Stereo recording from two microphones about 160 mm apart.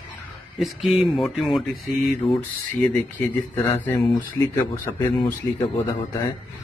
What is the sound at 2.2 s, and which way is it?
Speech, 20° left (ahead or behind).